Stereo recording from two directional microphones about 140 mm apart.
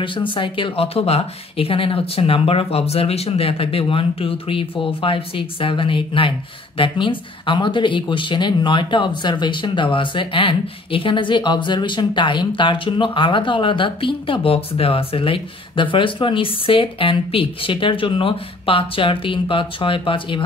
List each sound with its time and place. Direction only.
0.0 s speech: 35° left (ahead or behind)